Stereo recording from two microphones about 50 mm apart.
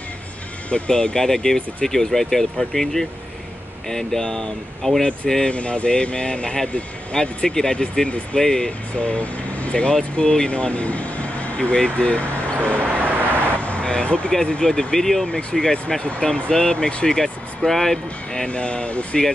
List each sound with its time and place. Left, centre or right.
0.7 s speech: left
0.9 s speech: centre
5.5 s speech: left
9.0 s speech: left
12.8 s vehicle: right
13.6 s vehicle: left
14.3 s speech: centre
16.0 s speech: left
16.5 s speech: centre
18.3 s speech: centre